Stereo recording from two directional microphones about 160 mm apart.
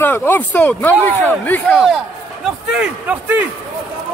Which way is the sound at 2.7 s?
10° right (ahead or behind).